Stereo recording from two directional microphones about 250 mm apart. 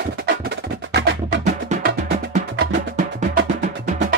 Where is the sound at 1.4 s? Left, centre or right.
Right.